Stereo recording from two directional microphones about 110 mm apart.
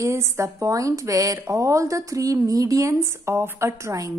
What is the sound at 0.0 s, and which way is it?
A woman's voice, 25° right (ahead or behind).